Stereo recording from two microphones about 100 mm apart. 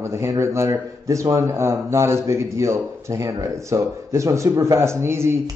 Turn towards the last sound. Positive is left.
turn(degrees=-25)  # may be behind; listen again after turning